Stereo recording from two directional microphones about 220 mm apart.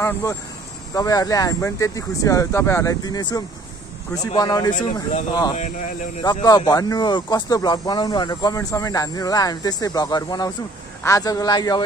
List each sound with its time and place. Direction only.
0.0 s speech: 15° left (ahead or behind)